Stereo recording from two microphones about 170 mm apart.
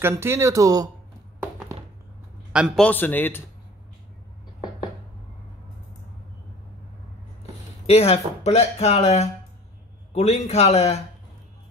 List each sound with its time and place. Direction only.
0.0 s speech: 15° right (ahead or behind)
2.5 s a man's voice: 5° right (ahead or behind)
2.8 s speech: 10° left (ahead or behind)
7.8 s speech: 35° left (ahead or behind)